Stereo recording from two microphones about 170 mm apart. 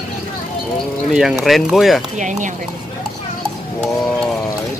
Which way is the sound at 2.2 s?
45° right (ahead or behind).